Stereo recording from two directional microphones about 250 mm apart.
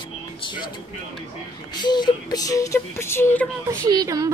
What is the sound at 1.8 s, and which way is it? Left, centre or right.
Speech, centre.